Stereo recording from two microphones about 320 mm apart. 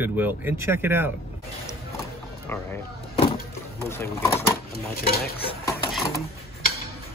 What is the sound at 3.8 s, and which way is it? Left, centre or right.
Speech, centre.